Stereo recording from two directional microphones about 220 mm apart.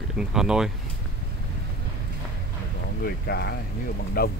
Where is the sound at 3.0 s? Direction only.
45° left (ahead or behind).